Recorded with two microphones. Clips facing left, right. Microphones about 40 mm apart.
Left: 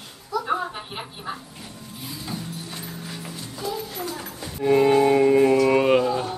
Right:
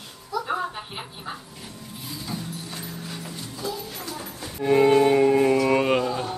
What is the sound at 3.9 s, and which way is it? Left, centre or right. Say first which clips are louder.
Music: left 3 dB; left.